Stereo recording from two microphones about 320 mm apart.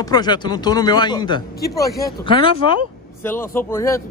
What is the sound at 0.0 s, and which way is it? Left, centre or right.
A man's voice, centre.